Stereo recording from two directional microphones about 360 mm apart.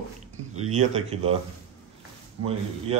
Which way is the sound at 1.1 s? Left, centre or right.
Centre.